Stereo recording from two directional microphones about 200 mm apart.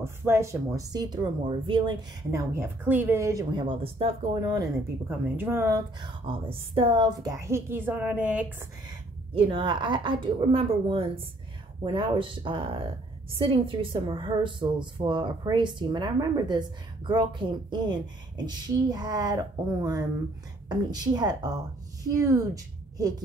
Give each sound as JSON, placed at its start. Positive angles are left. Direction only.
{"t": 0.0, "sound": "speech", "side_deg": -10}
{"t": 9.3, "sound": "a woman's voice", "side_deg": -25}